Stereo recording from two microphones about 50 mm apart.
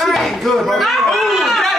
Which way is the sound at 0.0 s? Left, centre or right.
Centre.